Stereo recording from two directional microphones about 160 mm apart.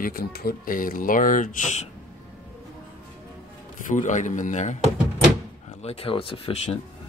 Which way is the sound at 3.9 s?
50° left (ahead or behind).